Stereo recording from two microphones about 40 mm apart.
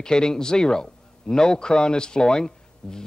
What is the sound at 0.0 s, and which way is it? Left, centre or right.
A man's voice, centre.